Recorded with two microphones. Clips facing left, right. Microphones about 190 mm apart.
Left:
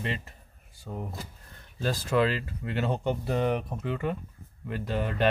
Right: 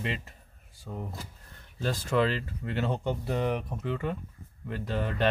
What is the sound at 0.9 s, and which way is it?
Speech, 20° left (ahead or behind).